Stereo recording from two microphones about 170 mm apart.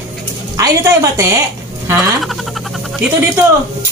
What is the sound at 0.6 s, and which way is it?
Speech, 20° right (ahead or behind).